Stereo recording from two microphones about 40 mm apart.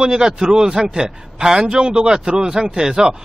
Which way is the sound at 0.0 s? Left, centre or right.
Centre.